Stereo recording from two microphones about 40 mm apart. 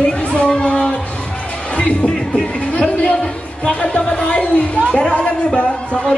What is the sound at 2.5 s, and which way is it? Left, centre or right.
Chatter, left.